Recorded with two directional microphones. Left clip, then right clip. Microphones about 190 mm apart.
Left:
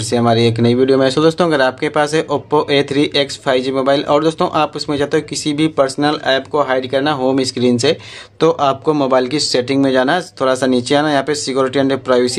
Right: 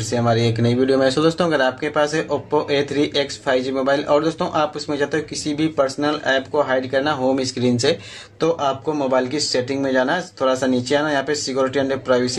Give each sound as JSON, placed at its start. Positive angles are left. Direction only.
{"t": 0.1, "sound": "speech", "side_deg": 35}